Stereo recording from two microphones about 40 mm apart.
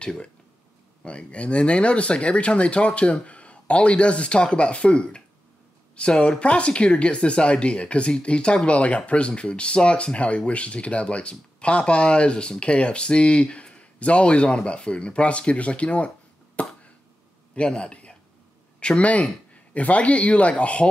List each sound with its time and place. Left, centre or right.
0.0 s speech: left
16.6 s a sound: left
17.6 s a man's voice: left